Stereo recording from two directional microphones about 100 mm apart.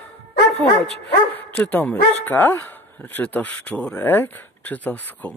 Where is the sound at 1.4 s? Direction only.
15° left (ahead or behind).